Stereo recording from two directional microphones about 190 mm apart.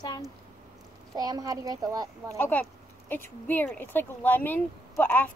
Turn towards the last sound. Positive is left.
turn(degrees=10)  # may be behind; listen again after turning